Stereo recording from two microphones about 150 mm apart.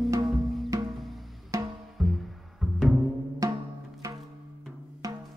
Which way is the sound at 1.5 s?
20° right (ahead or behind).